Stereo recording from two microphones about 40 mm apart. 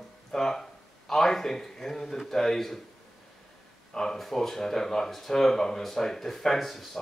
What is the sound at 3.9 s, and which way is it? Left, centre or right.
Speech, centre.